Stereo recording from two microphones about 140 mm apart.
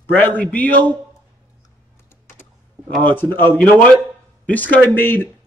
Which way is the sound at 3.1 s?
15° left (ahead or behind).